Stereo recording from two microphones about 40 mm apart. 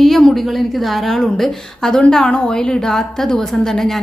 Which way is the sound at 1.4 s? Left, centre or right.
Centre.